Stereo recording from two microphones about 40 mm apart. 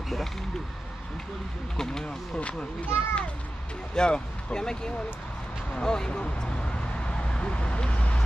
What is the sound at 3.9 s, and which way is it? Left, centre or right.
Speech, left.